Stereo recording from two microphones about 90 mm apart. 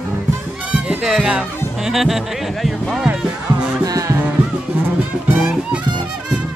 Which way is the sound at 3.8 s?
40° right (ahead or behind).